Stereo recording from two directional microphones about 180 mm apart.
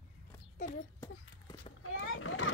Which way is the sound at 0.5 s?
45° left (ahead or behind).